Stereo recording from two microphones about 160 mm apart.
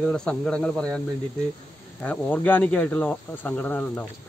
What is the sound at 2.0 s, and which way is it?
A man's voice, 10° left (ahead or behind).